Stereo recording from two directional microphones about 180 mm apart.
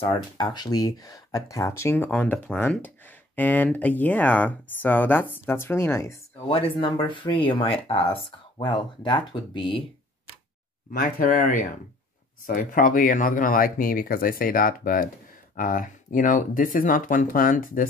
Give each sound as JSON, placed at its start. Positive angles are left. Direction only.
{"t": 0.0, "sound": "speech", "side_deg": 25}
{"t": 6.5, "sound": "speech", "side_deg": 25}
{"t": 10.9, "sound": "speech", "side_deg": 50}